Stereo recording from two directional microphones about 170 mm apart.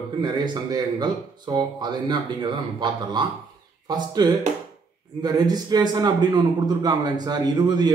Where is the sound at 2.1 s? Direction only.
25° right (ahead or behind).